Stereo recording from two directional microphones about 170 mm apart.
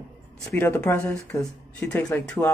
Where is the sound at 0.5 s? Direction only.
10° left (ahead or behind).